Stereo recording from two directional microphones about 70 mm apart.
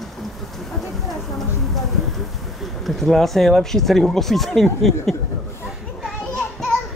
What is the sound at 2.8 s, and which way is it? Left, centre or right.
Speech, centre.